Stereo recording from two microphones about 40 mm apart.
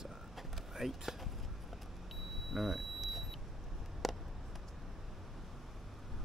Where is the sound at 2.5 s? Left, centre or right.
Centre.